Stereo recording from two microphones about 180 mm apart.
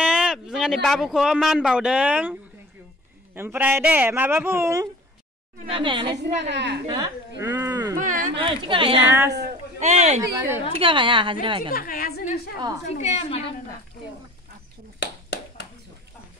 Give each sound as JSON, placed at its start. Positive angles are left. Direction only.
{"t": 0.0, "sound": "a sound", "side_deg": -5}
{"t": 0.8, "sound": "speech", "side_deg": 0}
{"t": 3.3, "sound": "speech", "side_deg": -10}
{"t": 5.7, "sound": "speech", "side_deg": -30}
{"t": 6.5, "sound": "a woman's voice", "side_deg": -75}
{"t": 6.9, "sound": "speech", "side_deg": -20}
{"t": 8.0, "sound": "a sound", "side_deg": -45}
{"t": 8.4, "sound": "speech", "side_deg": -30}
{"t": 9.0, "sound": "speech", "side_deg": -15}
{"t": 9.8, "sound": "speech", "side_deg": -40}
{"t": 11.7, "sound": "a woman's voice", "side_deg": 55}
{"t": 12.9, "sound": "a woman's voice", "side_deg": 40}
{"t": 15.0, "sound": "a sound", "side_deg": 65}